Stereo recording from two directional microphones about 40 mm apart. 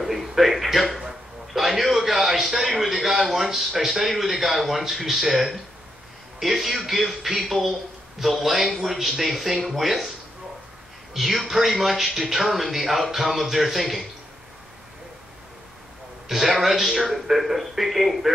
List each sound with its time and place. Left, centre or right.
0.0 s a sound: centre
6.4 s speech: centre
11.1 s speech: centre
16.3 s speech: centre